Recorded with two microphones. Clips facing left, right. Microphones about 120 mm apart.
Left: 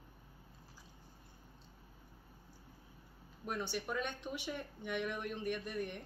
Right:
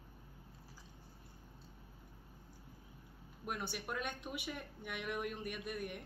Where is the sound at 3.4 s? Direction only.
5° right (ahead or behind).